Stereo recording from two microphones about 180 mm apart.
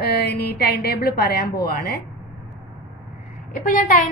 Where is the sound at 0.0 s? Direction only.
65° left (ahead or behind).